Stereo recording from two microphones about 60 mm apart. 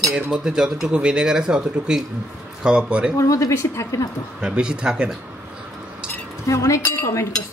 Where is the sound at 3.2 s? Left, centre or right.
Left.